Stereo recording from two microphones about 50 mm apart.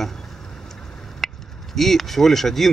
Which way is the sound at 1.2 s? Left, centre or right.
Centre.